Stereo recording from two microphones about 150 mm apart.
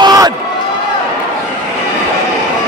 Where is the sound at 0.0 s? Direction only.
25° right (ahead or behind).